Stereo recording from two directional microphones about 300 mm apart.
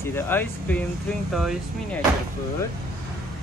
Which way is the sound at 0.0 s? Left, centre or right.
Centre.